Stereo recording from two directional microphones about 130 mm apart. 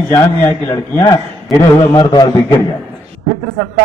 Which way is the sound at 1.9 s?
30° left (ahead or behind).